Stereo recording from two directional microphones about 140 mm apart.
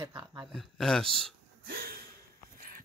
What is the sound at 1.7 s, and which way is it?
Gasp, 90° right.